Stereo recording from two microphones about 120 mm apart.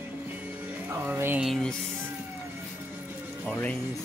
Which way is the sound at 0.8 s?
20° right (ahead or behind).